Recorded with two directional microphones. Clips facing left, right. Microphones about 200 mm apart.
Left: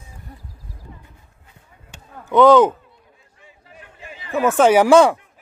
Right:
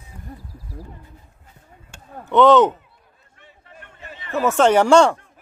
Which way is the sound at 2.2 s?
Centre (ahead or behind).